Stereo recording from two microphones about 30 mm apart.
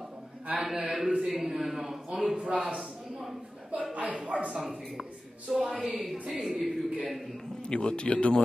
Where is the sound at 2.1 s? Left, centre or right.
Right.